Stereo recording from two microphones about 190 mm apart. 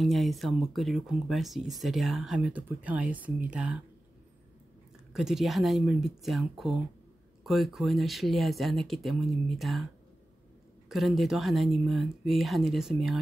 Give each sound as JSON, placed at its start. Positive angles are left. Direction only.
{"t": 0.0, "sound": "speech", "side_deg": 0}
{"t": 5.1, "sound": "speech", "side_deg": 0}
{"t": 10.9, "sound": "speech", "side_deg": 0}